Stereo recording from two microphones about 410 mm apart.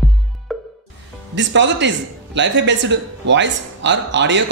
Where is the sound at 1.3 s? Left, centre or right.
Right.